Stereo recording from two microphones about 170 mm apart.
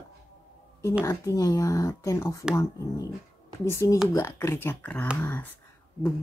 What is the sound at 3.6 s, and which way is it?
Speech, 15° left (ahead or behind).